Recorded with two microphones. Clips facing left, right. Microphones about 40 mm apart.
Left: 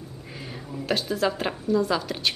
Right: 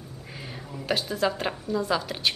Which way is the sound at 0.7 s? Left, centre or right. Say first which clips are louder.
Left 2 dB; centre.